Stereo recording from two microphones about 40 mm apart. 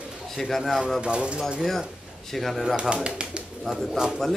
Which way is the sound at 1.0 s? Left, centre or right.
Right.